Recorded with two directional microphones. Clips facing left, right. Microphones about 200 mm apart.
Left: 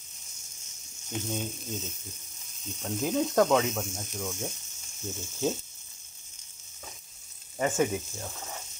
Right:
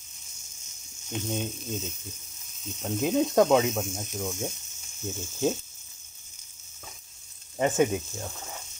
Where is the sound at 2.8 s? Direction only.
20° right (ahead or behind).